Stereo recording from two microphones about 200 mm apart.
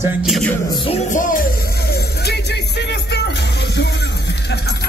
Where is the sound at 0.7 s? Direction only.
25° left (ahead or behind).